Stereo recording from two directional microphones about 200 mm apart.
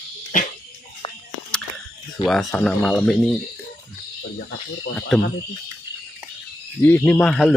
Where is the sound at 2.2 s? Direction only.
Centre (ahead or behind).